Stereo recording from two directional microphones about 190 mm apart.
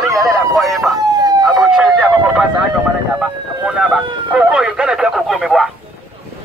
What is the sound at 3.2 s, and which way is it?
A man's voice, 5° right (ahead or behind).